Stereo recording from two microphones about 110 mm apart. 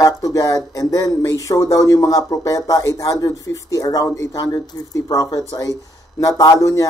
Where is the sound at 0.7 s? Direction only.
30° left (ahead or behind).